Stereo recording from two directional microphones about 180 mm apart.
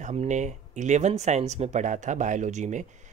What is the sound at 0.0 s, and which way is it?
Speech, 40° right (ahead or behind).